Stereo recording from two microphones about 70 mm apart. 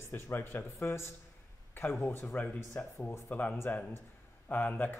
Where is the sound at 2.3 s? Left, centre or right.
Left.